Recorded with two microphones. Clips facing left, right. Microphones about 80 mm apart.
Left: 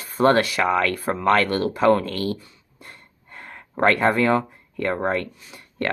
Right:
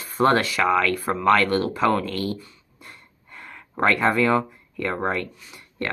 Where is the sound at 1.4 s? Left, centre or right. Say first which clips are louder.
Right 1 dB; right.